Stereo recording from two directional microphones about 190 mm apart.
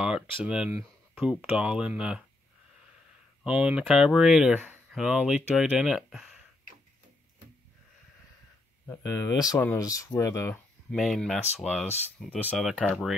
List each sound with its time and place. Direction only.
0.5 s speech: 5° right (ahead or behind)
3.4 s speech: 5° right (ahead or behind)
8.8 s speech: 20° left (ahead or behind)
10.9 s speech: centre (ahead or behind)